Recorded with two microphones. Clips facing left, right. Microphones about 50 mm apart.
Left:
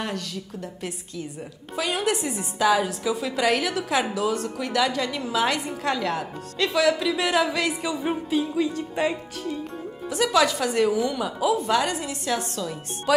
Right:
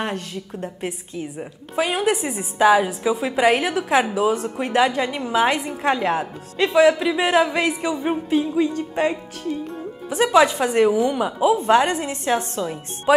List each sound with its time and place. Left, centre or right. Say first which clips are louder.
0.0 s a woman's voice: right 4 dB; right
8.7 s a woman's voice: right 3 dB; right
10.1 s a woman's voice: right 5 dB; right